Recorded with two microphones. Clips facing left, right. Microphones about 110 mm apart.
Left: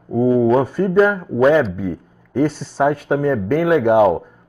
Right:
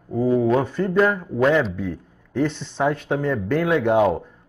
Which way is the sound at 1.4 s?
10° left (ahead or behind).